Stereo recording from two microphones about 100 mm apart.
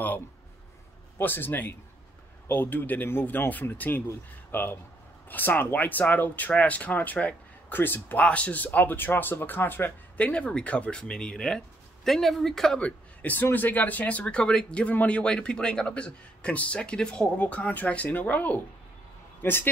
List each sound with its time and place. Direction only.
1.1 s speech: 20° left (ahead or behind)